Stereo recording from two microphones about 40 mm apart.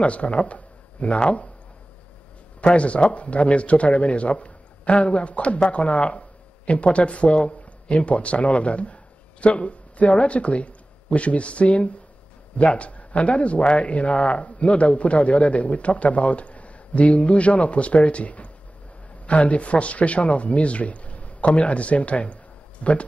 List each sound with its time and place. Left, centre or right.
0.0 s speech: left
2.6 s speech: left